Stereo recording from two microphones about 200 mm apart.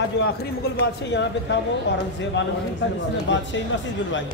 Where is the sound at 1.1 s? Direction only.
60° left (ahead or behind).